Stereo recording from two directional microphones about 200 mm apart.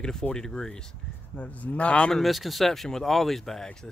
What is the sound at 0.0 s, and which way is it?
Speech, 5° left (ahead or behind).